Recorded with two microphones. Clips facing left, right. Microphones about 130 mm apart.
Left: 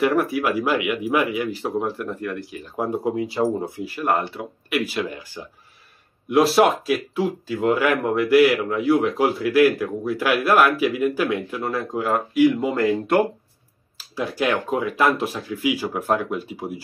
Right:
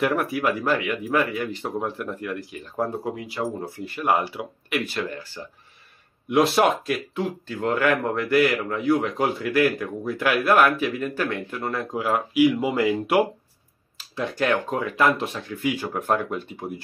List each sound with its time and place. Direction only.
0.0 s speech: centre (ahead or behind)
2.8 s speech: 20° left (ahead or behind)
3.8 s speech: centre (ahead or behind)
6.2 s speech: centre (ahead or behind)
13.9 s speech: 5° left (ahead or behind)